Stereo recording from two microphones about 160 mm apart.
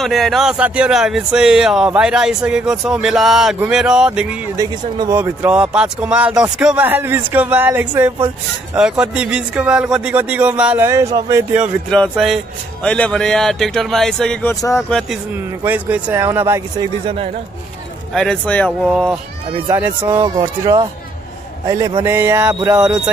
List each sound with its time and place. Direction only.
0.0 s speech: centre (ahead or behind)
4.6 s speech: 20° right (ahead or behind)
11.9 s speech: centre (ahead or behind)
14.5 s speech: 20° left (ahead or behind)
14.8 s speech: 5° left (ahead or behind)
15.6 s speech: 10° right (ahead or behind)
18.1 s speech: 5° left (ahead or behind)
19.7 s speech: 15° right (ahead or behind)